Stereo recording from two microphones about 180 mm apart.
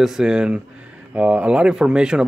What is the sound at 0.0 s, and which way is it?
Speech, centre (ahead or behind).